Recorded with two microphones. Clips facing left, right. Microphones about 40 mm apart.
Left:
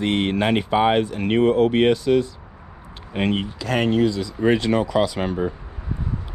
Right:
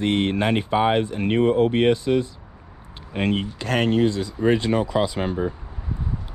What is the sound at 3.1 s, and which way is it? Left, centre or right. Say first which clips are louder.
Speech: left 1 dB; left.